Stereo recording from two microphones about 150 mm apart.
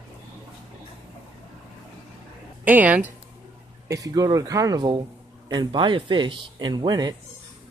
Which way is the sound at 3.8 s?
20° right (ahead or behind).